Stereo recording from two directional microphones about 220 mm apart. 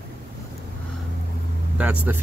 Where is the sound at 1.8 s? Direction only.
5° right (ahead or behind).